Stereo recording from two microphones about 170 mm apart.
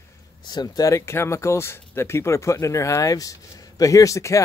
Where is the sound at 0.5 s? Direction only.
25° left (ahead or behind).